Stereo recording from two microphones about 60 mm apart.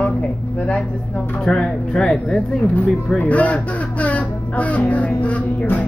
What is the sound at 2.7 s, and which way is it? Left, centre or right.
Speech, left.